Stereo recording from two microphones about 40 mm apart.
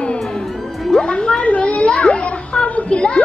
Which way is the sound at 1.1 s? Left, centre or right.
Left.